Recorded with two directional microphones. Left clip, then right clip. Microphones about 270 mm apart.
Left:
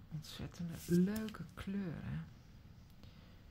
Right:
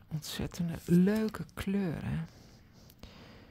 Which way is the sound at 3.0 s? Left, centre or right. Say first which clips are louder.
Right 11 dB; right.